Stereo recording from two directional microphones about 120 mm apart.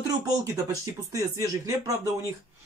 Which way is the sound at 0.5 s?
25° right (ahead or behind).